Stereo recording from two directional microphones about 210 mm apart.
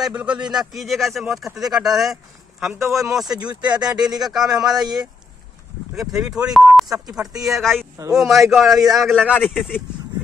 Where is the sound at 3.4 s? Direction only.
20° right (ahead or behind).